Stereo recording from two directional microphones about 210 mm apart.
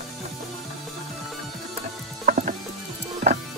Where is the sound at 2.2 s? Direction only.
40° right (ahead or behind).